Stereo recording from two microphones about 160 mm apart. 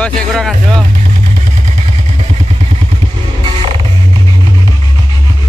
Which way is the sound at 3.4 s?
35° right (ahead or behind).